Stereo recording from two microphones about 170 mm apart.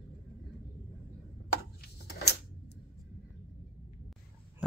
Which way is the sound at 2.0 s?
75° left (ahead or behind).